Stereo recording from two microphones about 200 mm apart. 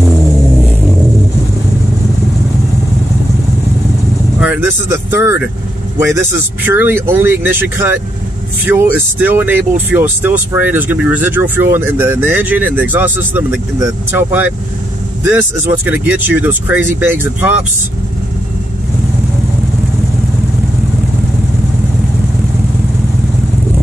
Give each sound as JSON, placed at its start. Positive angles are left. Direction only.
{"t": 4.4, "sound": "speech", "side_deg": -10}
{"t": 15.8, "sound": "speech", "side_deg": -10}